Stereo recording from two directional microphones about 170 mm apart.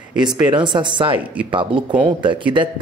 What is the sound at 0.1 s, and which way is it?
Speech, 25° right (ahead or behind).